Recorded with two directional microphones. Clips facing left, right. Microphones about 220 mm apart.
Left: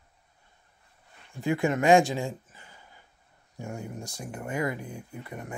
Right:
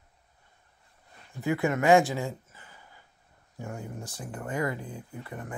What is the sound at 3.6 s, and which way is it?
Speech, 25° left (ahead or behind).